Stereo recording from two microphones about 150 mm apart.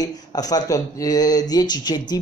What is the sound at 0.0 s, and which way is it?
Speech, 25° left (ahead or behind).